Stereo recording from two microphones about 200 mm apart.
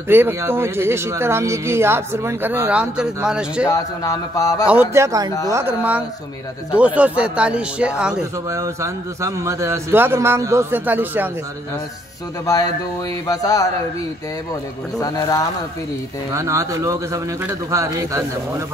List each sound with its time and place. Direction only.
0.1 s speech: 10° right (ahead or behind)
3.6 s a man's voice: 15° left (ahead or behind)
4.6 s speech: 10° right (ahead or behind)
8.5 s speech: 15° right (ahead or behind)
13.3 s a man's voice: 15° left (ahead or behind)
15.0 s a man's voice: 15° left (ahead or behind)
16.3 s speech: 15° right (ahead or behind)